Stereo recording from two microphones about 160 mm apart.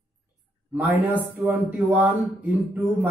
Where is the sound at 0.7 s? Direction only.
10° right (ahead or behind).